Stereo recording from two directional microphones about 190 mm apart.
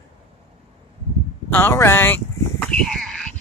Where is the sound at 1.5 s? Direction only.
10° left (ahead or behind).